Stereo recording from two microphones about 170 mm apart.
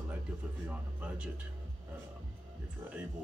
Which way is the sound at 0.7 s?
5° right (ahead or behind).